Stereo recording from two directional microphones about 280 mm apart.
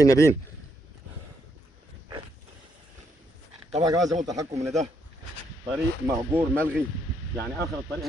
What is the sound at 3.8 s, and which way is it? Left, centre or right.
Speech, centre.